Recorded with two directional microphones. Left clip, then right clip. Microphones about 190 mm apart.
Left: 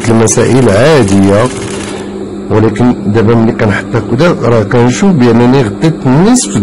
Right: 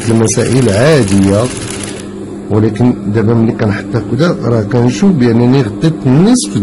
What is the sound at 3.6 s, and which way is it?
A man's voice, 10° left (ahead or behind).